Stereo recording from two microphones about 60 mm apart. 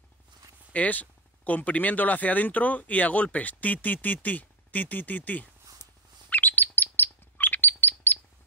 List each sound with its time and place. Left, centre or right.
0.7 s speech: left
6.3 s bird: left